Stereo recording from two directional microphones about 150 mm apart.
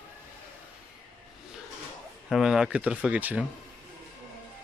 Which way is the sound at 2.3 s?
Centre (ahead or behind).